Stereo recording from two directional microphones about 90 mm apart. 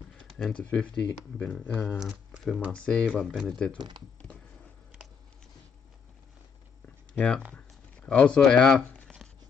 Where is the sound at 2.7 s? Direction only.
10° left (ahead or behind).